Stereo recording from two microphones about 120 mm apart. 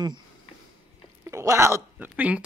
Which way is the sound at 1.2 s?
25° right (ahead or behind).